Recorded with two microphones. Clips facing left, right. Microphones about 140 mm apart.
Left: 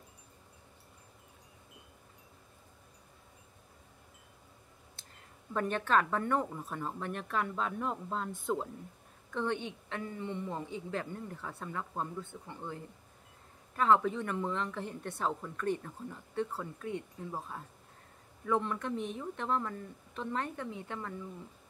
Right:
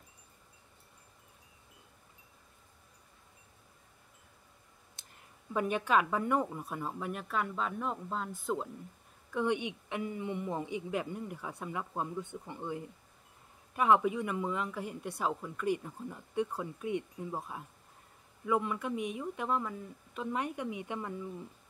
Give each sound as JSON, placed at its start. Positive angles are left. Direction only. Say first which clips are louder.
{"t": 5.0, "sound": "a sound", "louder": "left 2 dB", "side_deg": -20}
{"t": 5.5, "sound": "speech", "louder": "right 1 dB", "side_deg": -10}
{"t": 9.3, "sound": "speech", "louder": "right 3 dB", "side_deg": -15}